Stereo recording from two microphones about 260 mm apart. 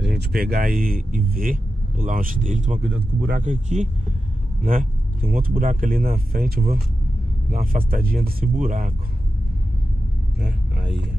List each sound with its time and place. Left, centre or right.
0.2 s speech: right